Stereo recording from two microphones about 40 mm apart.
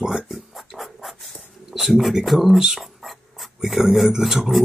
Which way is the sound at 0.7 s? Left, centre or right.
Centre.